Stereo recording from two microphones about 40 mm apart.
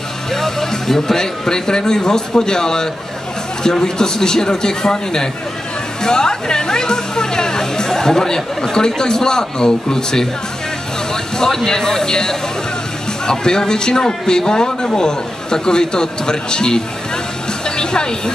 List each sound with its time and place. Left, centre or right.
0.3 s a man's voice: centre
11.3 s a man's voice: centre
17.6 s music: centre